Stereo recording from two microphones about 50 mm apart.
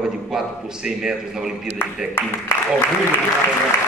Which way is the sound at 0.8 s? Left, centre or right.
Centre.